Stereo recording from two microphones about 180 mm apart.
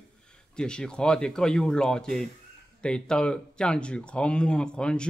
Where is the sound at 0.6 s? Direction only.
5° left (ahead or behind).